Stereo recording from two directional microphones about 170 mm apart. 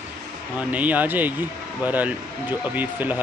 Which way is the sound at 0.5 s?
10° right (ahead or behind).